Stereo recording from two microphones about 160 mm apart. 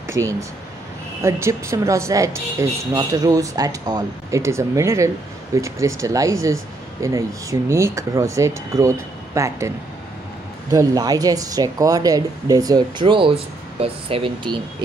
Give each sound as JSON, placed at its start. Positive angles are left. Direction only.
{"t": 0.1, "sound": "speech", "side_deg": -20}
{"t": 10.7, "sound": "speech", "side_deg": -20}